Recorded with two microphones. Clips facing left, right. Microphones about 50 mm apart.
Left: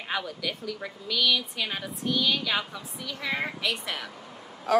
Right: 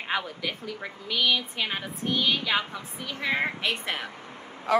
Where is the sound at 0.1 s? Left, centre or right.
Right.